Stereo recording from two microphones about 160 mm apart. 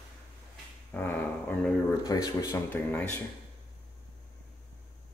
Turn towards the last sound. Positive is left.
turn(degrees=10)  # may be behind; listen again after turning